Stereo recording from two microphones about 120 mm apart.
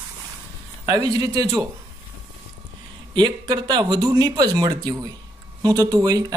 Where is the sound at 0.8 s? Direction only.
30° right (ahead or behind).